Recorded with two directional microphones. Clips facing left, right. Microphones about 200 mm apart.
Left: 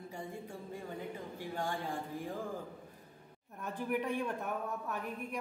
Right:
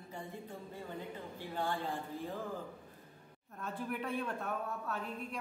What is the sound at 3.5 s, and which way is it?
A woman's voice, 15° left (ahead or behind).